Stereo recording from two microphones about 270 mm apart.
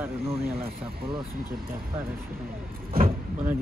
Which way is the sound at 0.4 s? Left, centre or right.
Right.